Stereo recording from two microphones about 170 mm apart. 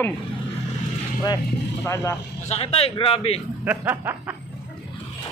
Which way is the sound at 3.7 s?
10° right (ahead or behind).